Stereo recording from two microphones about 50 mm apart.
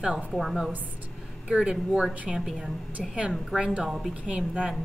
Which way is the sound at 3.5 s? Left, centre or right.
Right.